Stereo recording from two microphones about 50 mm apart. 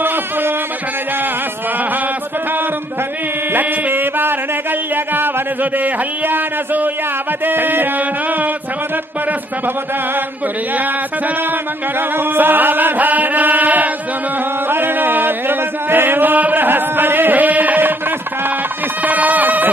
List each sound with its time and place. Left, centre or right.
0.0 s music: right
3.5 s music: right
4.9 s speech: right
12.2 s speech: right
14.7 s a sound: right
19.0 s speech: right